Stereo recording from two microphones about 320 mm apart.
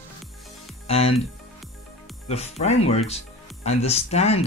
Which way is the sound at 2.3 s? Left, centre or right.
Centre.